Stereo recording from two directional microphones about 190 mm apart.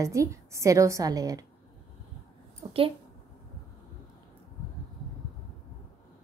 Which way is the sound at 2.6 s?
30° right (ahead or behind).